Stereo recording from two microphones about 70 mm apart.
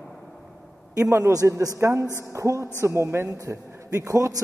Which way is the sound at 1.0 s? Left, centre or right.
Right.